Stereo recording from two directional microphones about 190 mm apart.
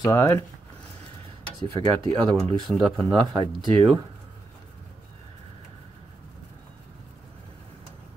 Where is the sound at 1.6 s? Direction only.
30° right (ahead or behind).